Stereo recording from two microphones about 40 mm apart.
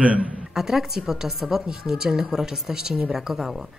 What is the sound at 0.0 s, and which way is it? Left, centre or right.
Speech, right.